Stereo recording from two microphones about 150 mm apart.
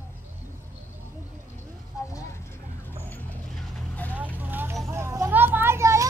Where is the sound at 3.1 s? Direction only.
5° left (ahead or behind).